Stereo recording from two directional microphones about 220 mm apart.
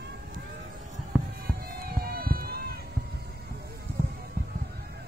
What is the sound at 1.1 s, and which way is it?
Fireworks, 5° left (ahead or behind).